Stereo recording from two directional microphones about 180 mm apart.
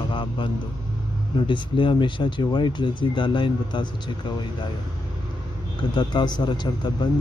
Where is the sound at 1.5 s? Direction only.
25° left (ahead or behind).